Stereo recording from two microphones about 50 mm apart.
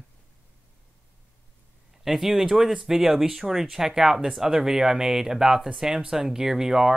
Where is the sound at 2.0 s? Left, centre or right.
Centre.